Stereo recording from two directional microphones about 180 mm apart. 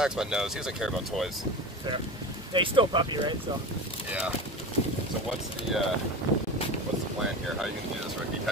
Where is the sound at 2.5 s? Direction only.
30° right (ahead or behind).